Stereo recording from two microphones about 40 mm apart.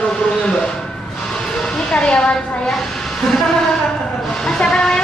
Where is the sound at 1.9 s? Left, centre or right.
Left.